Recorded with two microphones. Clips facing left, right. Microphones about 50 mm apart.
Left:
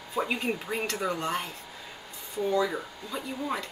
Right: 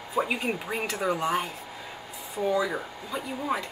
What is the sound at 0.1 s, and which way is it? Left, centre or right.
Speech, centre.